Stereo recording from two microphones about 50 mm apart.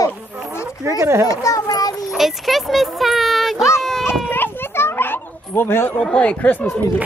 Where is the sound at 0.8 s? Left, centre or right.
Right.